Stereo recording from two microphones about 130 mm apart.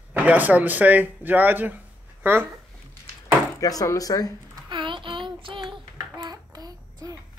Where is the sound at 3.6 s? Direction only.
25° left (ahead or behind).